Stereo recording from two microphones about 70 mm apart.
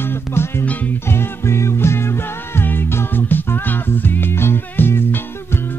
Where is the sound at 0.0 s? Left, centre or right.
Left.